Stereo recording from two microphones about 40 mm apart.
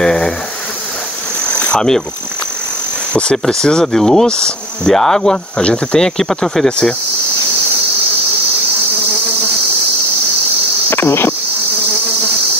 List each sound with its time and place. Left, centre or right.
0.0 s snake: centre
1.8 s speech: centre
3.1 s speech: left
3.8 s speech: centre
4.3 s speech: left
5.9 s speech: centre
10.9 s insect: left